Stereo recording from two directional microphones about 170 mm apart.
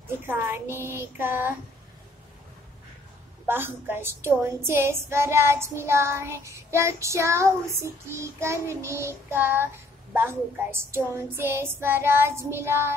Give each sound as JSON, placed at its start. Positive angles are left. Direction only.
{"t": 0.3, "sound": "a woman's voice", "side_deg": -10}
{"t": 3.4, "sound": "a woman's voice", "side_deg": -10}